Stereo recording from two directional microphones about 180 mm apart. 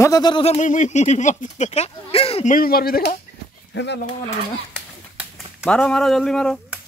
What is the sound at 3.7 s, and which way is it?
Speech, 75° left (ahead or behind).